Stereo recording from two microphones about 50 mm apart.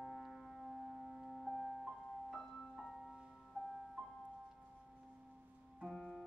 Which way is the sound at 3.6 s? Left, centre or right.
Right.